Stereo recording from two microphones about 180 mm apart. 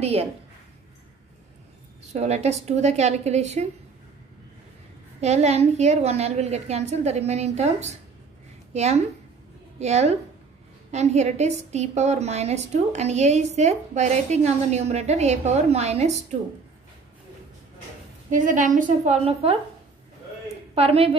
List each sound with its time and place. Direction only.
0.0 s a woman's voice: 35° right (ahead or behind)
2.0 s a woman's voice: 35° right (ahead or behind)
5.2 s a woman's voice: 35° right (ahead or behind)
18.3 s a woman's voice: 45° right (ahead or behind)
20.7 s a woman's voice: 35° right (ahead or behind)